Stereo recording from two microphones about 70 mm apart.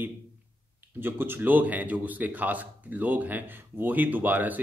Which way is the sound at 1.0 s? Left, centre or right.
Right.